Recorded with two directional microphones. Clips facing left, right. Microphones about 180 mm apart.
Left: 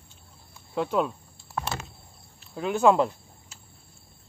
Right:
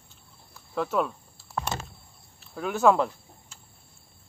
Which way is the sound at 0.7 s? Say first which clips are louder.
Left 1 dB; 25° left (ahead or behind).